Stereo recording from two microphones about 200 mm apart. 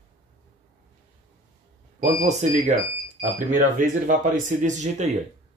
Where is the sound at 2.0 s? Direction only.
35° right (ahead or behind).